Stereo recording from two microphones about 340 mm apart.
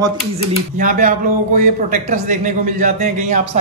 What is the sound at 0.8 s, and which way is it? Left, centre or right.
Speech, right.